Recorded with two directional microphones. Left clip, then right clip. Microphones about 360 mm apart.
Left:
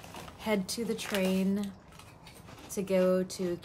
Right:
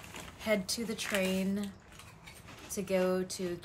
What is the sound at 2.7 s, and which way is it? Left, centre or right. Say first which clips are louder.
Speech: left 4 dB; centre.